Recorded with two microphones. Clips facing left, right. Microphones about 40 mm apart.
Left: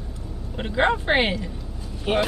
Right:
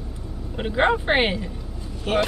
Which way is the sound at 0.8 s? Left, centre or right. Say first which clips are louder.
Right 1 dB; centre.